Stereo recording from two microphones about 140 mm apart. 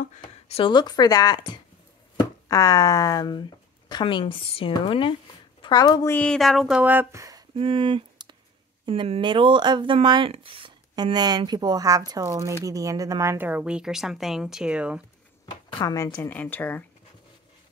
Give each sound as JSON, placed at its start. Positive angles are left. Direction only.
{"t": 0.5, "sound": "a woman's voice", "side_deg": 40}
{"t": 6.0, "sound": "speech", "side_deg": 10}
{"t": 7.5, "sound": "a sound", "side_deg": -40}
{"t": 8.8, "sound": "speech", "side_deg": -40}
{"t": 15.8, "sound": "a woman's voice", "side_deg": 25}